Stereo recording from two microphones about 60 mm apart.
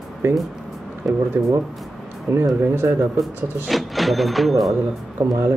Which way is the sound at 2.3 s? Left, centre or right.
Right.